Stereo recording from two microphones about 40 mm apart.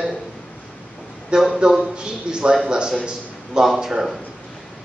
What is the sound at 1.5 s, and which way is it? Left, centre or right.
A man's voice, centre.